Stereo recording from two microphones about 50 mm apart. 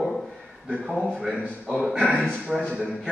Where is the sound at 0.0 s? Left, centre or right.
Centre.